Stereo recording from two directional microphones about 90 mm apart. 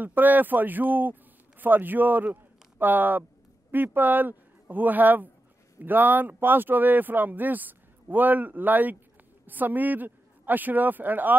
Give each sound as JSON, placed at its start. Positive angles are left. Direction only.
{"t": 0.0, "sound": "a man's voice", "side_deg": -20}